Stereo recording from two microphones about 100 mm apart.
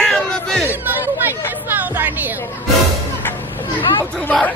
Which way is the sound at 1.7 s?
20° right (ahead or behind).